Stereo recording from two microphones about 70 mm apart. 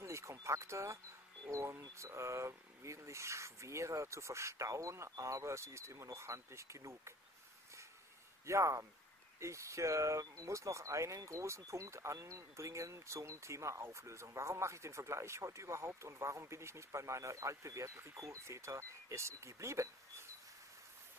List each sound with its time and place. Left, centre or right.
0.0 s a sound: right
1.5 s speech: right
8.5 s speech: right